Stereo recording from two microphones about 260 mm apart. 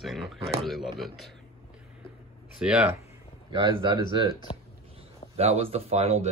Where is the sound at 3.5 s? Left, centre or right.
Centre.